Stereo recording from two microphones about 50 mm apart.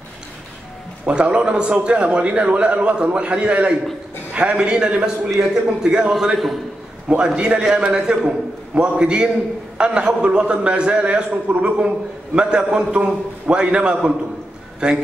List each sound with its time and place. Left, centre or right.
1.0 s a man's voice: right
4.3 s a sound: right
4.6 s a man's voice: centre
6.1 s a man's voice: centre
7.1 s a man's voice: centre